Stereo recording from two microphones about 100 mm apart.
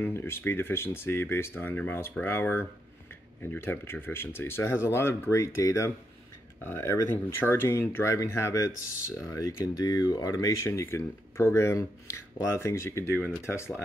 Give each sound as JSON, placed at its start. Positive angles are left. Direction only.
{"t": 0.0, "sound": "speech", "side_deg": 20}